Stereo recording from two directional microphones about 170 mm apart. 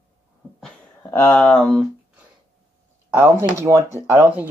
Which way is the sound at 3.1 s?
15° right (ahead or behind).